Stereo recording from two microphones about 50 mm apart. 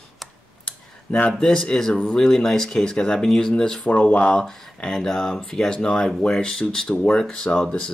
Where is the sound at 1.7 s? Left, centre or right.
Centre.